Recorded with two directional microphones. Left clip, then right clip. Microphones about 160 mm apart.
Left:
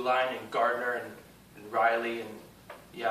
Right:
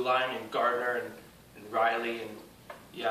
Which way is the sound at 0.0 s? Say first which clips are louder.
Even; 10° right (ahead or behind).